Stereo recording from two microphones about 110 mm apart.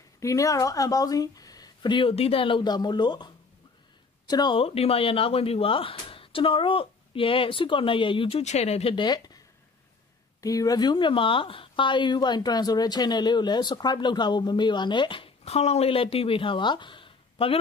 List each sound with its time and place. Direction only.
0.2 s speech: 30° left (ahead or behind)
4.6 s speech: 65° left (ahead or behind)
8.9 s speech: 40° left (ahead or behind)
10.4 s speech: 30° left (ahead or behind); by 17.6 s 55° left (ahead or behind)